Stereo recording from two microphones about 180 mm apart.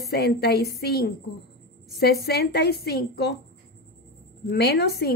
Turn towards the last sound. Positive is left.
turn(degrees=60)  # may be behind; listen again after turning